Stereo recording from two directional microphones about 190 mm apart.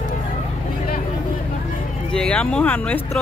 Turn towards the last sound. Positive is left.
turn(degrees=10)  # may be behind; listen again after turning